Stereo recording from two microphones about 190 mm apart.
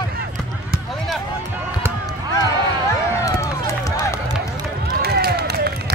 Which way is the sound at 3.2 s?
15° left (ahead or behind).